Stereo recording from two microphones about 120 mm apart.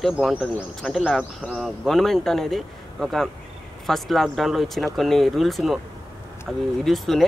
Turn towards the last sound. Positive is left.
turn(degrees=0)  # may be behind; listen again after turning